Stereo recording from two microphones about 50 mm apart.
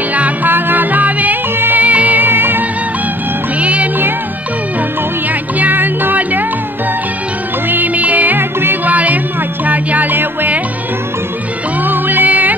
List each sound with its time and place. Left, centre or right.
0.1 s music: right
3.5 s music: right
5.6 s music: right
7.7 s music: right
8.8 s music: right
11.8 s music: right